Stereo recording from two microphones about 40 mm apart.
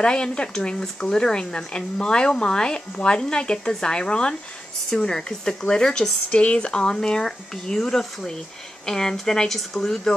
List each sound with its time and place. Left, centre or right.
0.0 s speech: left